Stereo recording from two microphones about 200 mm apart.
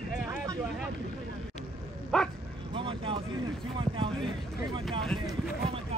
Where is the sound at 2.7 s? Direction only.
25° right (ahead or behind).